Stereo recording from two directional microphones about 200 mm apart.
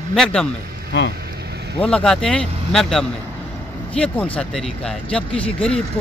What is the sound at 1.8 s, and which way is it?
Speech, 5° left (ahead or behind).